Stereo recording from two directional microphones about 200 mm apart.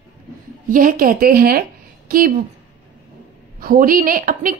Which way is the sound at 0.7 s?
45° right (ahead or behind).